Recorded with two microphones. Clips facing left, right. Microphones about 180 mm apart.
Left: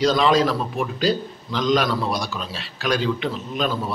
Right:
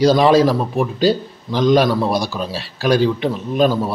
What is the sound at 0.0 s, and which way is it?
Speech, 35° right (ahead or behind).